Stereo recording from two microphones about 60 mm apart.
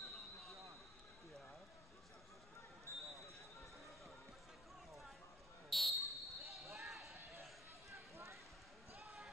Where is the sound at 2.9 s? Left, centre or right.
Left.